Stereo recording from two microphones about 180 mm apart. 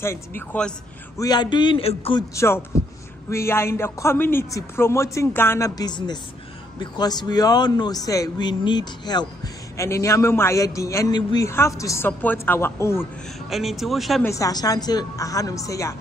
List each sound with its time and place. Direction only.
0.0 s a man's voice: 15° left (ahead or behind)
1.1 s a woman's voice: 20° left (ahead or behind)
2.3 s a man's voice: 15° left (ahead or behind)
13.5 s speech: centre (ahead or behind)
14.2 s a woman's voice: 20° left (ahead or behind)